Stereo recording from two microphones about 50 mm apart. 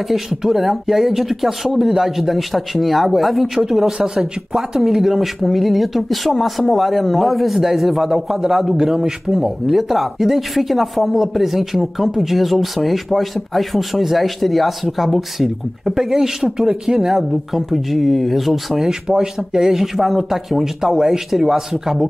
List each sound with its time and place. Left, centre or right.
0.1 s speech: centre